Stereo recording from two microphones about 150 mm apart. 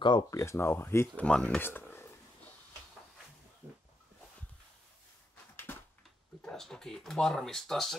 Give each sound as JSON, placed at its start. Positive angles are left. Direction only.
{"t": 0.0, "sound": "speech", "side_deg": 25}
{"t": 5.7, "sound": "a sound", "side_deg": 15}
{"t": 6.4, "sound": "speech", "side_deg": 5}